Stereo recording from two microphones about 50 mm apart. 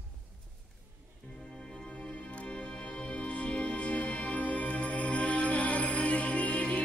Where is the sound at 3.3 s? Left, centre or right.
Left.